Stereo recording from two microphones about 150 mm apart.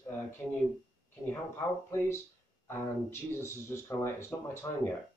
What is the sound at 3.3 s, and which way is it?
Speech, 20° left (ahead or behind).